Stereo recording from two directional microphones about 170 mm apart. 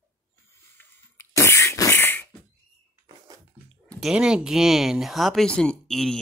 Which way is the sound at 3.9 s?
Centre (ahead or behind).